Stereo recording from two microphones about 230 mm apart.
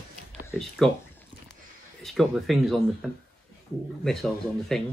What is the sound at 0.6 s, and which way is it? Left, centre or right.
Speech, centre.